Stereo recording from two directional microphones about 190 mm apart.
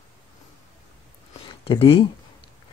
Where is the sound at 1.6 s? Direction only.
25° left (ahead or behind).